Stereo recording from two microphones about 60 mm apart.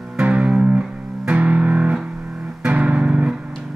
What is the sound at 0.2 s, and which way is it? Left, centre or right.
Music, right.